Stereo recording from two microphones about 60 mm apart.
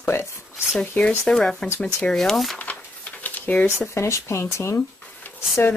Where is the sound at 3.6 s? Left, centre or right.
Left.